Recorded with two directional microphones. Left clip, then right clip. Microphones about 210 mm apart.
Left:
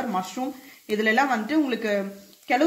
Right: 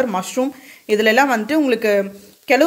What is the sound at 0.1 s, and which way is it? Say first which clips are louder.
A woman's voice: right 7 dB; 50° right (ahead or behind).